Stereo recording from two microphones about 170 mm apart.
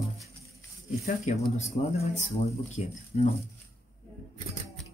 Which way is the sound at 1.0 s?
45° left (ahead or behind).